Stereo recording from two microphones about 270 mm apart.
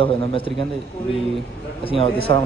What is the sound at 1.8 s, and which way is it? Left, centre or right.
Speech, centre.